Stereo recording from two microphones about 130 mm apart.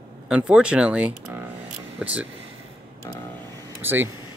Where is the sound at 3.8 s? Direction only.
15° right (ahead or behind).